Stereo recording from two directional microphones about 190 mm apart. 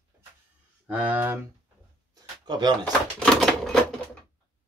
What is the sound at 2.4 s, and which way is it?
Speech, 25° right (ahead or behind).